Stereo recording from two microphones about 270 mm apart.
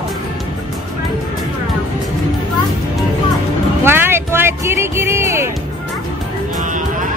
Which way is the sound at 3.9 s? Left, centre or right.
Centre.